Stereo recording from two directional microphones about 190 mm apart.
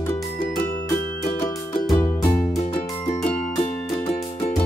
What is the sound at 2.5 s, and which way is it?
Music, 35° left (ahead or behind).